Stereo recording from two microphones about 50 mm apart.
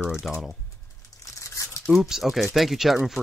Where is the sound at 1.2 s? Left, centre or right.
Left.